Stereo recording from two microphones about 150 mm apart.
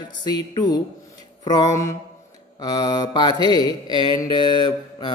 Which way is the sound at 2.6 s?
25° left (ahead or behind).